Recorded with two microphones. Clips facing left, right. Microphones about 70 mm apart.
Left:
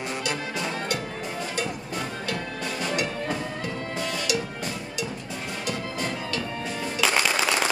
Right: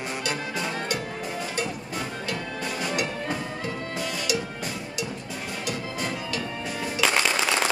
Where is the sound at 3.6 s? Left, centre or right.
Centre.